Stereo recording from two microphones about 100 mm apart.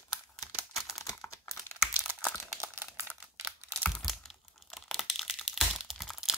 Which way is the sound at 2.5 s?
25° right (ahead or behind).